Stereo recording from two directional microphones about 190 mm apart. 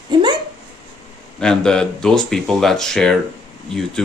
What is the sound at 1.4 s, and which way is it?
Speech, 5° left (ahead or behind).